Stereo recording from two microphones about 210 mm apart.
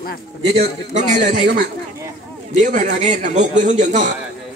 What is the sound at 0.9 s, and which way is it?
A man's voice, 40° right (ahead or behind).